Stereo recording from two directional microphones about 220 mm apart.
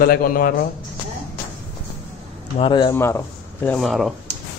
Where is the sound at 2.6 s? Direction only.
20° left (ahead or behind); by 4.1 s centre (ahead or behind).